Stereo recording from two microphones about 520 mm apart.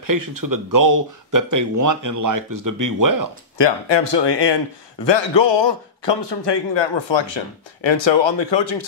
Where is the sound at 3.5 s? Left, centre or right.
Left.